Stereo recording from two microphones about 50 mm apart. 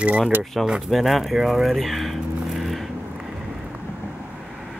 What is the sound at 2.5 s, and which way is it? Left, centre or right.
Vehicle, centre.